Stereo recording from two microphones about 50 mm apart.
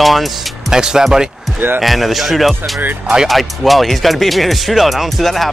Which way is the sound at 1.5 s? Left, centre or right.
Right.